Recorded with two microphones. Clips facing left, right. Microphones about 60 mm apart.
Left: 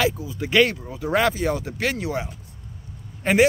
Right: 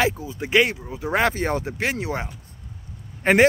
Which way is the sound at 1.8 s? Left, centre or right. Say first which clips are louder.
Even; right.